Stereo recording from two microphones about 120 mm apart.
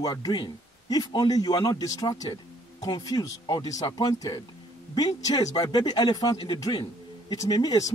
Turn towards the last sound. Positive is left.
turn(degrees=30)  # may be behind; listen again after turning